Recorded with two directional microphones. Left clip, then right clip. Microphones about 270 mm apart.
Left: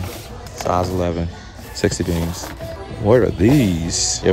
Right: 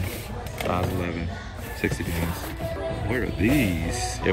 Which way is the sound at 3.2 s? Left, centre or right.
Centre.